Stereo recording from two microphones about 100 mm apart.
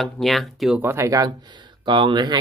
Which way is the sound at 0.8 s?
25° right (ahead or behind).